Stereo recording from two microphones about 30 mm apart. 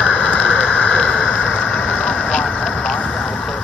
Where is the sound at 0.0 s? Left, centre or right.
Left.